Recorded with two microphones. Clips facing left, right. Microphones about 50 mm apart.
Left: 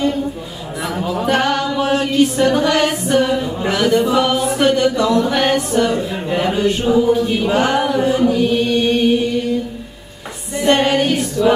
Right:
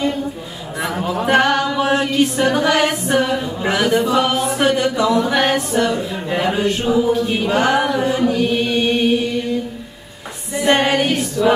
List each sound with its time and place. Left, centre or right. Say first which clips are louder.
0.9 s a sound: right 1 dB; centre
1.4 s music: right 1 dB; centre
6.2 s speech: left 1 dB; centre
7.4 s chant: right 1 dB; centre
8.5 s chant: left 2 dB; centre
10.5 s female singing: left 1 dB; centre
11.1 s choir: left 1 dB; centre